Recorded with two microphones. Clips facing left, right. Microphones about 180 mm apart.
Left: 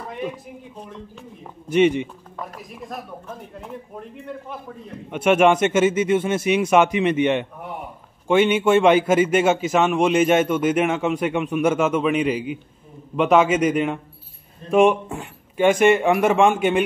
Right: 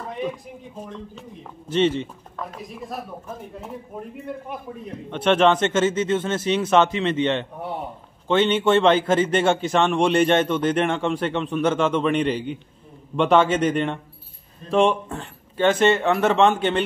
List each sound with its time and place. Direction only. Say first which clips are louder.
1.7 s a man's voice: left 3 dB; 10° left (ahead or behind)
2.5 s a woman's voice: right 1 dB; centre (ahead or behind)
5.1 s a man's voice: left 2 dB; 10° left (ahead or behind)